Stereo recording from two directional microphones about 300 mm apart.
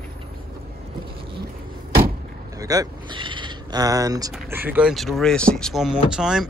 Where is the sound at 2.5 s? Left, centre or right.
Centre.